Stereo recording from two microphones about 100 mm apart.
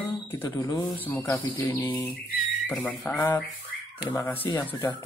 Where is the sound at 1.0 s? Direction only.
15° left (ahead or behind).